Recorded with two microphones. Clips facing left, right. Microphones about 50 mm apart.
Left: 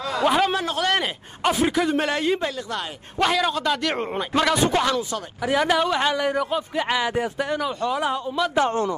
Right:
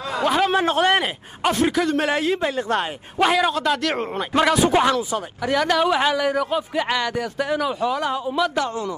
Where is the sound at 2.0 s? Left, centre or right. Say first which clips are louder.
Right 2 dB; centre.